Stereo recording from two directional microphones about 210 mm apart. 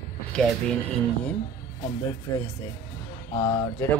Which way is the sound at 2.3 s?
15° left (ahead or behind).